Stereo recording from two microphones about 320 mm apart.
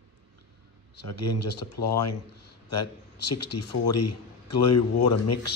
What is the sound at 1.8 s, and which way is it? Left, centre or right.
Speech, left.